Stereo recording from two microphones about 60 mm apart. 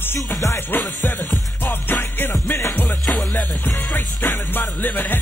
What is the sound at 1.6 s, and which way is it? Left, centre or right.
Music, left.